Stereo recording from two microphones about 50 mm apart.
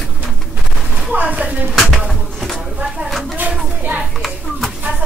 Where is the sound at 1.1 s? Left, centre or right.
Right.